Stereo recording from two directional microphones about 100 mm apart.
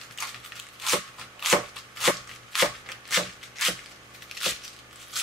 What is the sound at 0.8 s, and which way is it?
Chopping, centre (ahead or behind).